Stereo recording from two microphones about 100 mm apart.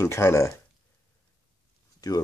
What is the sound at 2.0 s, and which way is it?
Speech, 40° left (ahead or behind).